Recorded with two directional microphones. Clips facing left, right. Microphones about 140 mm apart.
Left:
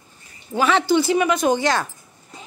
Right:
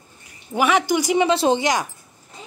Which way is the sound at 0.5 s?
10° right (ahead or behind).